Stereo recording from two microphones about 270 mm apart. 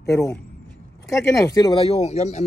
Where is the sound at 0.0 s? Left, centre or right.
Centre.